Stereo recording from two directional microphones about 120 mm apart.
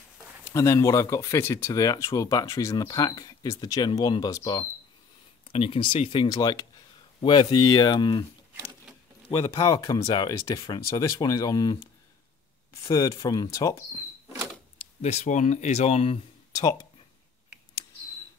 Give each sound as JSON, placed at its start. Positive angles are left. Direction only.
{"t": 0.5, "sound": "speech", "side_deg": 25}
{"t": 5.5, "sound": "speech", "side_deg": 50}
{"t": 6.2, "sound": "speech", "side_deg": 35}
{"t": 9.4, "sound": "speech", "side_deg": 25}
{"t": 12.9, "sound": "speech", "side_deg": 30}
{"t": 15.0, "sound": "speech", "side_deg": 65}